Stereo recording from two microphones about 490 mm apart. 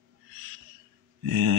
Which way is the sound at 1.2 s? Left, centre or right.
Right.